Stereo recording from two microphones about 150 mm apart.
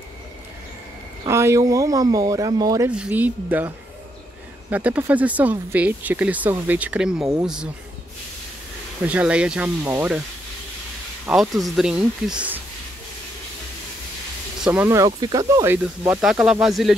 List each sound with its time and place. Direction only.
1.2 s speech: 20° right (ahead or behind)
2.9 s speech: 10° right (ahead or behind)
9.0 s speech: 10° right (ahead or behind)
11.2 s speech: centre (ahead or behind)
14.6 s speech: 10° right (ahead or behind)
15.7 s speech: 15° right (ahead or behind)